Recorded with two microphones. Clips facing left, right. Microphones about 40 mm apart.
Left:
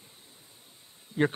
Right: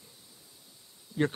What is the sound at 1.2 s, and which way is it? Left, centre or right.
Speech, left.